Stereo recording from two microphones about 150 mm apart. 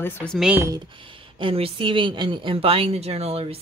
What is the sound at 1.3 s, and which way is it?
A woman's voice, 40° right (ahead or behind).